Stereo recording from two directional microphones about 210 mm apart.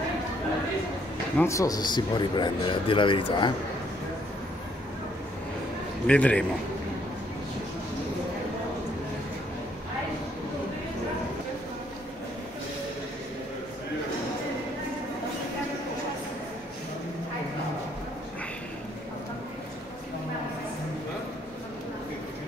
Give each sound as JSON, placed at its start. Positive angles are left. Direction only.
{"t": 1.4, "sound": "a man's voice", "side_deg": 15}
{"t": 6.0, "sound": "a man's voice", "side_deg": 5}